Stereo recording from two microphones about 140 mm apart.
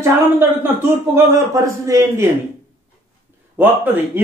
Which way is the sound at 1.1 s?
20° right (ahead or behind).